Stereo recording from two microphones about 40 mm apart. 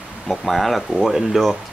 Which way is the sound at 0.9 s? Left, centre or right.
Centre.